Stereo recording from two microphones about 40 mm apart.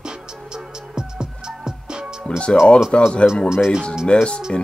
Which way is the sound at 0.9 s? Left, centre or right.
Centre.